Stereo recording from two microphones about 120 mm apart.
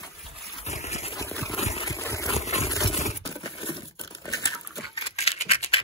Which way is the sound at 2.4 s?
65° left (ahead or behind).